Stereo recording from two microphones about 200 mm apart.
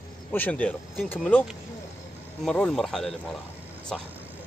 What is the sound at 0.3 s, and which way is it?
Speech, 10° left (ahead or behind).